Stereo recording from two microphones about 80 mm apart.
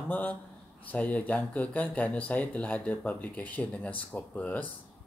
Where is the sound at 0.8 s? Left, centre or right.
Centre.